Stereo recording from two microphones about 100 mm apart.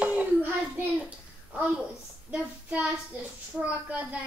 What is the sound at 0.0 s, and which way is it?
Child singing, 15° right (ahead or behind).